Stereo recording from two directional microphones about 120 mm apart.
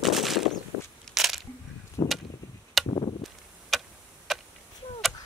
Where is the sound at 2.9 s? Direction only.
50° left (ahead or behind).